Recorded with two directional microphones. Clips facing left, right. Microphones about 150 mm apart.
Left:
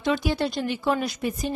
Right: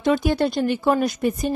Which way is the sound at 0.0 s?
50° right (ahead or behind).